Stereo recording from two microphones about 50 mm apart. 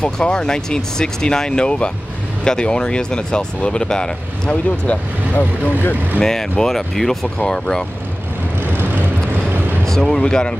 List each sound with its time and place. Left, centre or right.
0.0 s speech: centre; by 6.2 s left
6.7 s speech: centre
9.8 s speech: centre